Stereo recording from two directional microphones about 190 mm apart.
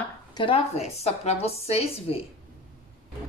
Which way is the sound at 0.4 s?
30° left (ahead or behind).